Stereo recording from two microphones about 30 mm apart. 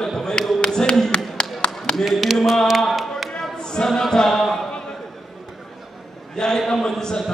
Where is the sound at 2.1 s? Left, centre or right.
Centre.